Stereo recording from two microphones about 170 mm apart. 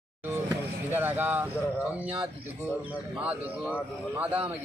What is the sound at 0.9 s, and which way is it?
Speech, 10° right (ahead or behind).